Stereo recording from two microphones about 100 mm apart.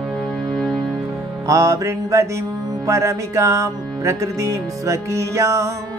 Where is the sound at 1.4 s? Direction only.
35° right (ahead or behind).